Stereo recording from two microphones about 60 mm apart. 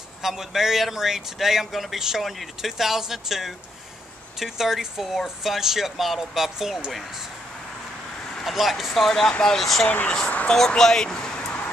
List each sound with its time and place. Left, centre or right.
0.2 s a man's voice: centre
8.5 s a man's voice: centre
9.8 s speech: left
10.7 s a sound: centre